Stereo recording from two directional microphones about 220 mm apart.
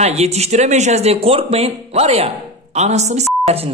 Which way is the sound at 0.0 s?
30° right (ahead or behind).